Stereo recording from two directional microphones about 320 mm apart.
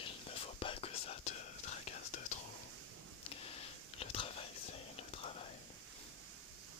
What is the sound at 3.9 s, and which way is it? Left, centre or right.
Whispering, centre.